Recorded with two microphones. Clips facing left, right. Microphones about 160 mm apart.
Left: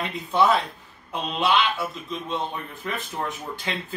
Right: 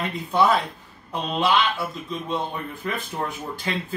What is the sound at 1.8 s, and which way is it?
Speech, centre (ahead or behind).